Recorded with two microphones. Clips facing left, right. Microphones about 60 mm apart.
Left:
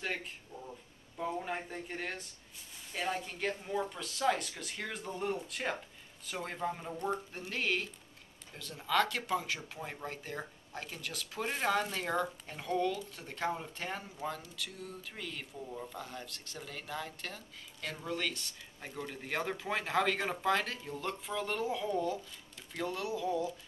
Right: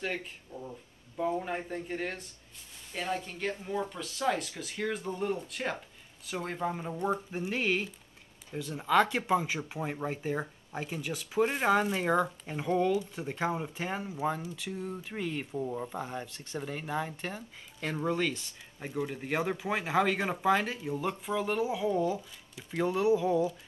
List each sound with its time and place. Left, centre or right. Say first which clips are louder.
0.0 s speech: right 3 dB; centre; by 23.4 s right